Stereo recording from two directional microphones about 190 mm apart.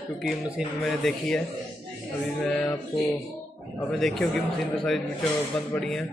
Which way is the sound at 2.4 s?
5° left (ahead or behind).